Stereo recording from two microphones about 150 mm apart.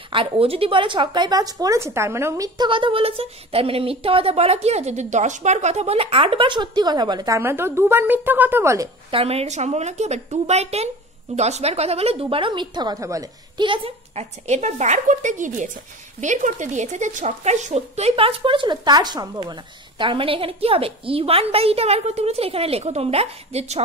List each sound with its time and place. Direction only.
0.1 s a woman's voice: 40° right (ahead or behind); by 8.9 s 20° right (ahead or behind)
9.1 s a woman's voice: 40° right (ahead or behind)